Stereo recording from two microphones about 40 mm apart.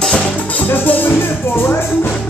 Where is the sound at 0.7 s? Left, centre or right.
Left.